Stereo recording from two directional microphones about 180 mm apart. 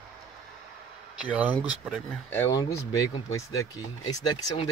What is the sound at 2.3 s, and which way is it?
Speech, 15° left (ahead or behind).